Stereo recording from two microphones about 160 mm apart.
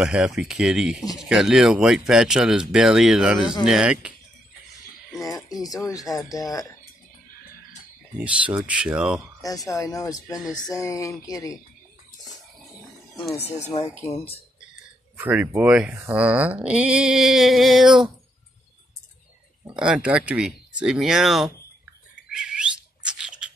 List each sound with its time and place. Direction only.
0.0 s speech: 5° right (ahead or behind)
5.2 s speech: 20° left (ahead or behind)
8.2 s speech: 5° right (ahead or behind)
9.4 s speech: 20° left (ahead or behind)
14.0 s speech: 40° left (ahead or behind)
15.1 s speech: 10° right (ahead or behind)
19.7 s speech: 5° right (ahead or behind)
22.1 s squawk: 5° right (ahead or behind)